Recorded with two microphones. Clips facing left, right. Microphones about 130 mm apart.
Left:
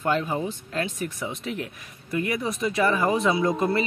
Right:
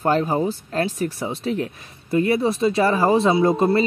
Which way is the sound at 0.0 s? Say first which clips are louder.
Right 6 dB; 40° right (ahead or behind).